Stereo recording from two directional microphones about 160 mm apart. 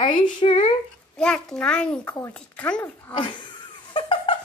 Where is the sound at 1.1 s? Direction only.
5° left (ahead or behind).